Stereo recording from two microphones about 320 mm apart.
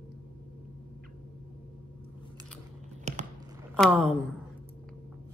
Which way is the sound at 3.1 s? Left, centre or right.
Right.